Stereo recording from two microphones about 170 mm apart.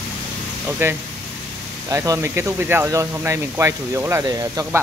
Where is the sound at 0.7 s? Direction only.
10° right (ahead or behind).